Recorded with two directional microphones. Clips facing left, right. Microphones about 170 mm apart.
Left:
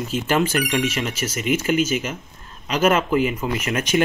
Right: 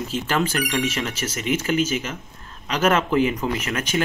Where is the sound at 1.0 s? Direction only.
15° left (ahead or behind).